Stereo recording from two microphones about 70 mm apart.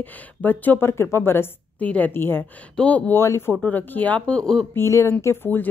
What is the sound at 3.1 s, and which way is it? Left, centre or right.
Speech, left.